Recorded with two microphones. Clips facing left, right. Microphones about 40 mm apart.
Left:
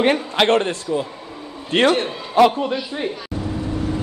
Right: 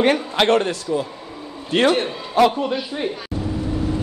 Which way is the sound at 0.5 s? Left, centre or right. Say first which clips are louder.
Even; left.